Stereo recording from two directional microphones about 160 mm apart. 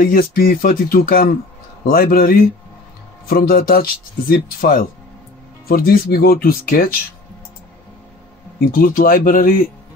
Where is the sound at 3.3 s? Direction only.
65° left (ahead or behind).